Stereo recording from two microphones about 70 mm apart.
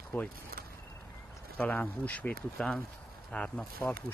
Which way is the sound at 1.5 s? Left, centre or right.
Left.